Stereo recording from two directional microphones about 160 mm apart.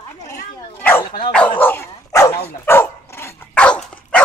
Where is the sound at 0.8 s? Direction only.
10° left (ahead or behind).